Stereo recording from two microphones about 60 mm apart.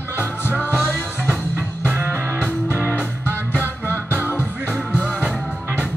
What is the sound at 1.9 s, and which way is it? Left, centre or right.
Music, right.